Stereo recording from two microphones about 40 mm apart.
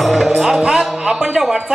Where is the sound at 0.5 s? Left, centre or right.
Centre.